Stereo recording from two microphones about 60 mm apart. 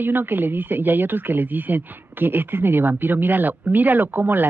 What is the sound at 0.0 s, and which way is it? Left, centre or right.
Speech, right.